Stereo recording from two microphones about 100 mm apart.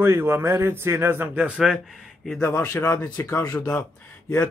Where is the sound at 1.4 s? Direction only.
5° right (ahead or behind).